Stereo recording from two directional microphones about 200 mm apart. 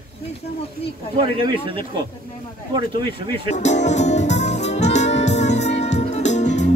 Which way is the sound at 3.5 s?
35° left (ahead or behind).